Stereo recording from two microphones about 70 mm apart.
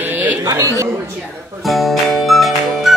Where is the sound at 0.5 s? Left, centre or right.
Right.